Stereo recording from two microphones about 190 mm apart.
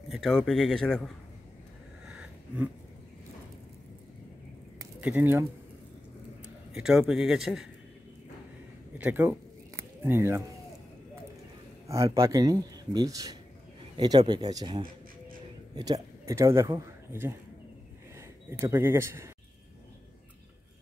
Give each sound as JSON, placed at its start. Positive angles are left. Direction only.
{"t": 0.1, "sound": "speech", "side_deg": 0}
{"t": 2.0, "sound": "a sound", "side_deg": -5}
{"t": 5.0, "sound": "speech", "side_deg": -10}
{"t": 6.7, "sound": "speech", "side_deg": -5}
{"t": 8.9, "sound": "a sound", "side_deg": -10}
{"t": 11.9, "sound": "speech", "side_deg": -15}
{"t": 18.5, "sound": "speech", "side_deg": -15}